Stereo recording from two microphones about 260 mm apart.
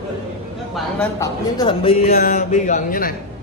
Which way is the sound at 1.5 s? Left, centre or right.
Centre.